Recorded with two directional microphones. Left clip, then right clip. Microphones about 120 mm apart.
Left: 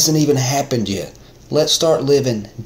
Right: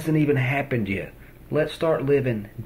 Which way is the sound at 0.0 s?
40° left (ahead or behind).